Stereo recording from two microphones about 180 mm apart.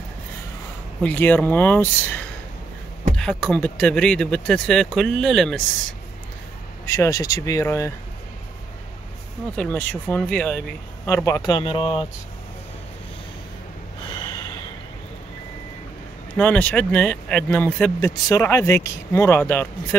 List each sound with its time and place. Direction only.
1.0 s speech: 10° left (ahead or behind)
3.2 s speech: 5° left (ahead or behind)
6.9 s speech: 15° left (ahead or behind)
9.6 s speech: 10° left (ahead or behind); by 12.1 s 30° left (ahead or behind)
14.0 s snort: 25° left (ahead or behind)
16.3 s speech: 10° left (ahead or behind)